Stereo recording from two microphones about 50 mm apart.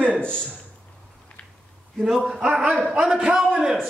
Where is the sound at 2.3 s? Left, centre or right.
Centre.